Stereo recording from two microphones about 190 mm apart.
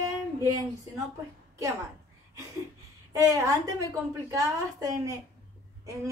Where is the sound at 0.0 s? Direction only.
15° right (ahead or behind).